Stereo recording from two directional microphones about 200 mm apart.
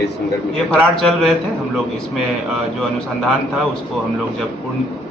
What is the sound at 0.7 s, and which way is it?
Speech, centre (ahead or behind).